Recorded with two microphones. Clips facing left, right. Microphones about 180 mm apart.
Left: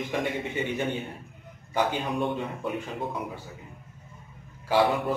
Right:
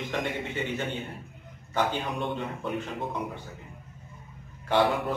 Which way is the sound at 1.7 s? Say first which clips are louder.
Left 1 dB; 10° left (ahead or behind).